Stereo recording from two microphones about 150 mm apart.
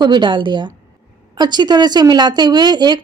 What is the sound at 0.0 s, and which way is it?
A woman's voice, 30° right (ahead or behind).